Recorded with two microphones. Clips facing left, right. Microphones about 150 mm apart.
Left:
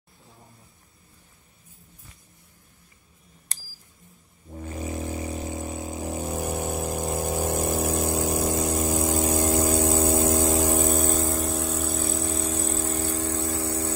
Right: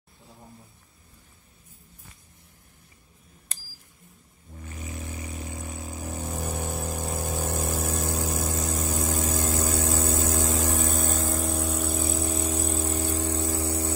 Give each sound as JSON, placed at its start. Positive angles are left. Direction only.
{"t": 4.6, "sound": "vehicle", "side_deg": 35}
{"t": 11.0, "sound": "vehicle", "side_deg": 0}